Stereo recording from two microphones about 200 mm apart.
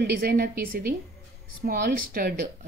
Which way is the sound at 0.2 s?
50° right (ahead or behind).